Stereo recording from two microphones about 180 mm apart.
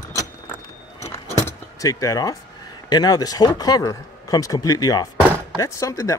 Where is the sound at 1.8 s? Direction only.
20° left (ahead or behind).